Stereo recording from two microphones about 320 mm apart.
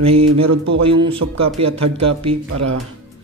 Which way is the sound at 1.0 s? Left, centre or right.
Centre.